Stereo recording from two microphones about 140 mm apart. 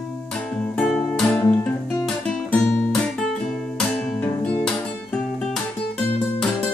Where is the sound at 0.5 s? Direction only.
5° left (ahead or behind).